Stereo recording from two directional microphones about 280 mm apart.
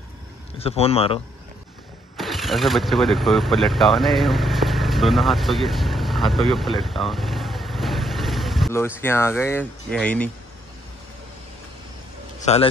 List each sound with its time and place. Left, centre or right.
0.6 s speech: left
2.1 s speech: centre
12.5 s speech: left